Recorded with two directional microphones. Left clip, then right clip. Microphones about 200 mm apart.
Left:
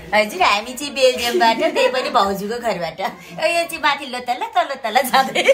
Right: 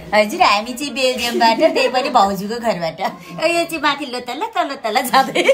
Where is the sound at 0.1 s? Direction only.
15° right (ahead or behind).